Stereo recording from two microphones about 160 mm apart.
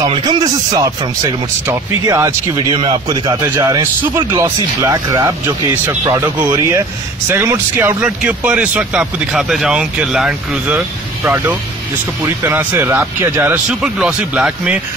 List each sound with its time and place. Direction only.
0.0 s speech: 25° right (ahead or behind)
3.4 s speech: 10° right (ahead or behind)